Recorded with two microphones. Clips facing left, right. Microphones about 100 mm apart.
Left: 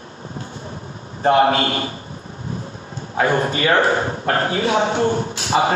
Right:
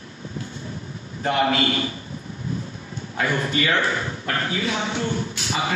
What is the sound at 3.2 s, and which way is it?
Speech, 40° left (ahead or behind).